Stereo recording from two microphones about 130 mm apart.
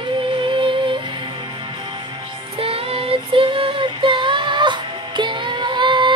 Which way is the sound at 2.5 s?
45° right (ahead or behind).